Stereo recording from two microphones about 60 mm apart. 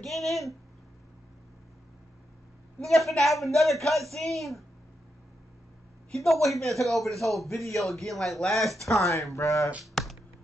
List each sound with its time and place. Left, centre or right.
0.0 s a man's voice: centre
2.8 s a man's voice: centre
6.1 s a man's voice: centre
9.1 s speech: left
10.0 s music: centre